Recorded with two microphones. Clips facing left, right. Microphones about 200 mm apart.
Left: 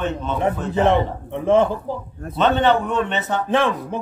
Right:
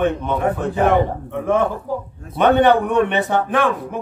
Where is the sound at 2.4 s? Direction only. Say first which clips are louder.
Right 4 dB; 15° right (ahead or behind).